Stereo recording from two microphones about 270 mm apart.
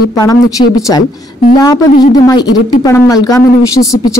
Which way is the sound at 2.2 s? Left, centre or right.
Centre.